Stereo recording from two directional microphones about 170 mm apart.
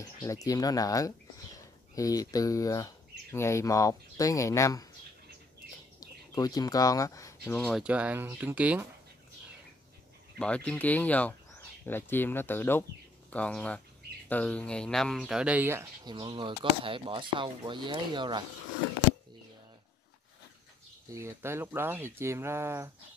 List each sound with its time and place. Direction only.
0.0 s speech: 20° left (ahead or behind)
5.9 s bird: 20° left (ahead or behind)
7.4 s speech: 10° left (ahead or behind)
7.8 s speech: 10° right (ahead or behind)
10.4 s speech: 5° left (ahead or behind); by 18.4 s 25° right (ahead or behind)
21.1 s speech: 15° right (ahead or behind)